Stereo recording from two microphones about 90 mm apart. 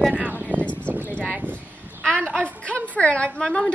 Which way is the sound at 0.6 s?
15° left (ahead or behind).